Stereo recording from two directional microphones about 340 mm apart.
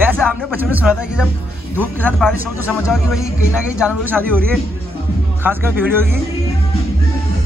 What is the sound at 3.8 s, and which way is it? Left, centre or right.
Speech, centre.